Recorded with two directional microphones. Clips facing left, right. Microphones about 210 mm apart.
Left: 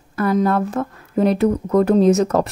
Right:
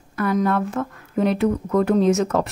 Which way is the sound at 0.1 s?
35° left (ahead or behind).